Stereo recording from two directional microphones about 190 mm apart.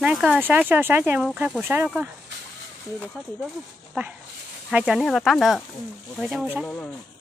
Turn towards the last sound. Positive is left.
turn(degrees=0)  # may be behind; listen again after turning